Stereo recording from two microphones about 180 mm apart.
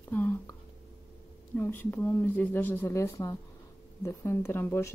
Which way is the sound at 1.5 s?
10° left (ahead or behind).